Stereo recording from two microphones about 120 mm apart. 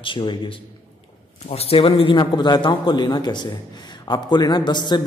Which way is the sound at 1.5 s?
55° left (ahead or behind).